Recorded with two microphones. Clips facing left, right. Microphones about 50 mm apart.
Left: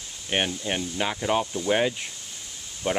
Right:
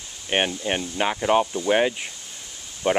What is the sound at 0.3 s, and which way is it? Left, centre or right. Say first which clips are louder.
Speech: right 3 dB; right.